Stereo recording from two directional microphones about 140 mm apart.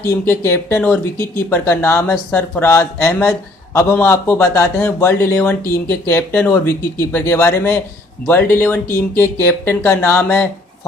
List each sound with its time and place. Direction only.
0.0 s speech: 15° left (ahead or behind)